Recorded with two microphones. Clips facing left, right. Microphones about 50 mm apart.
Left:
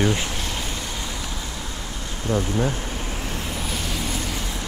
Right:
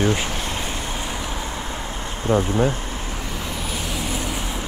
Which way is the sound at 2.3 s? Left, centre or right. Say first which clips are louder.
Right 4 dB; right.